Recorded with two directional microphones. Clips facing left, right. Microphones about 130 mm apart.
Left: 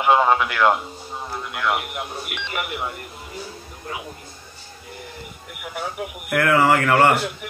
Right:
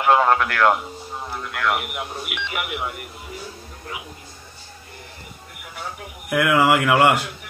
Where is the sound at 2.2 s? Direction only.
5° right (ahead or behind).